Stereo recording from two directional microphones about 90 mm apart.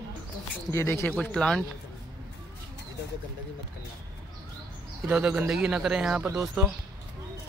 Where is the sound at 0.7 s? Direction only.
25° left (ahead or behind).